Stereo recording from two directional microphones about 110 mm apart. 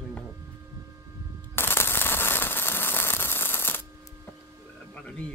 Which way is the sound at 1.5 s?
20° left (ahead or behind).